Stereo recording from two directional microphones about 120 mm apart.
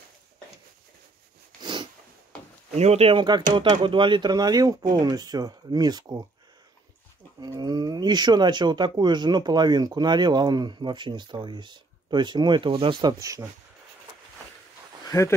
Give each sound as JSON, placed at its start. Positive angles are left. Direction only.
{"t": 1.6, "sound": "a sound", "side_deg": -40}
{"t": 2.7, "sound": "speech", "side_deg": -65}
{"t": 3.2, "sound": "speech", "side_deg": -40}
{"t": 7.3, "sound": "speech", "side_deg": -35}
{"t": 13.0, "sound": "speech", "side_deg": -30}
{"t": 15.0, "sound": "speech", "side_deg": 25}